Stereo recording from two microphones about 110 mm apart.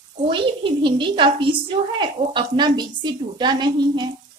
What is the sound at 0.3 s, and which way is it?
A woman's voice, 50° right (ahead or behind).